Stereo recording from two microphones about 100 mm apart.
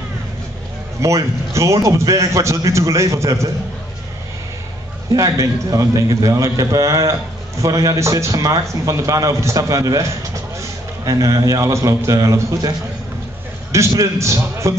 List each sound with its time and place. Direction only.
1.0 s a man's voice: 30° right (ahead or behind)
5.1 s a man's voice: 35° right (ahead or behind)